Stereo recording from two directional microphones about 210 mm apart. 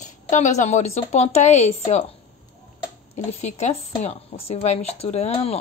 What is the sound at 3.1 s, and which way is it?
Speech, 30° left (ahead or behind).